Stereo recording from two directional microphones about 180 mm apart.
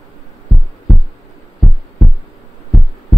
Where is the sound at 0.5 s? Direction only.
Centre (ahead or behind).